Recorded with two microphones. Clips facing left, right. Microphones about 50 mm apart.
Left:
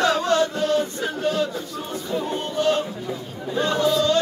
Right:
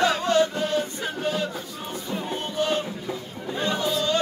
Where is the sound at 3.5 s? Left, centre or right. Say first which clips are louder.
Left 5 dB; centre.